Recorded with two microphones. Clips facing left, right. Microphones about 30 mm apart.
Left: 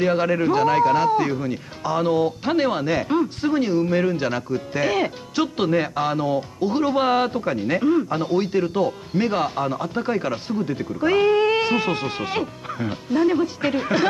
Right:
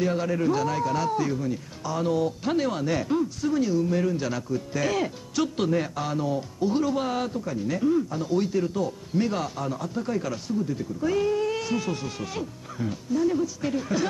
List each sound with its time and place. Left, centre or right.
0.0 s a man's voice: left